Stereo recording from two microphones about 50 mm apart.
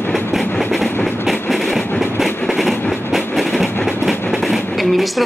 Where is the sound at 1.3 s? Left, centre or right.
Centre.